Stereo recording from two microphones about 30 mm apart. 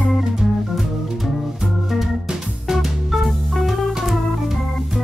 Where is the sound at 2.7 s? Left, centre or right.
Centre.